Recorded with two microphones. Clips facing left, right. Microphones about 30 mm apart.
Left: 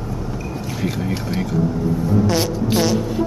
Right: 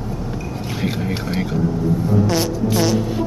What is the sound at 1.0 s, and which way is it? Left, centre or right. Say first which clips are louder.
Speech: even; centre.